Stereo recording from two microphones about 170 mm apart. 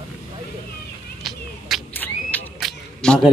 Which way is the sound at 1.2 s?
Centre (ahead or behind).